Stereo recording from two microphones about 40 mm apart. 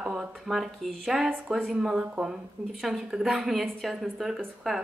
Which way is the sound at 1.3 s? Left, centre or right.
Right.